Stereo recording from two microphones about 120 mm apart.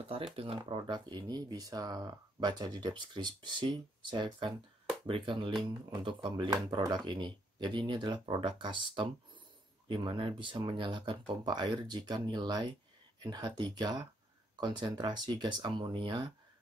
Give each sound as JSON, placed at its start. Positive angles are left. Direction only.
{"t": 0.4, "sound": "speech", "side_deg": -50}